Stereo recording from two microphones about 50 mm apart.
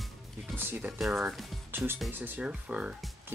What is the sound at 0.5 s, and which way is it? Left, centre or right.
Speech, right.